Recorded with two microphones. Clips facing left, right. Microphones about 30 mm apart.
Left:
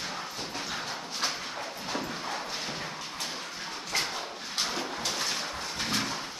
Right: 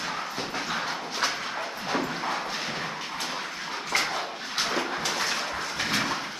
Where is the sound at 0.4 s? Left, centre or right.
Right.